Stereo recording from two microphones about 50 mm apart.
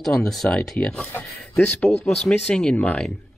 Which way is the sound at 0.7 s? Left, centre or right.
Centre.